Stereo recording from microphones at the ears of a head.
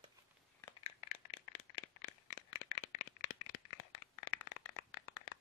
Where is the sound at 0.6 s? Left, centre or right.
Left.